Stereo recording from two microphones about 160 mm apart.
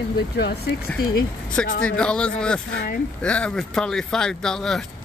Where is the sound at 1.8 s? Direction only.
5° left (ahead or behind).